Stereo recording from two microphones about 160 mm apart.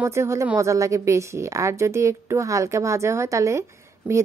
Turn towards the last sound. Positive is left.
turn(degrees=-15)  # may be behind; listen again after turning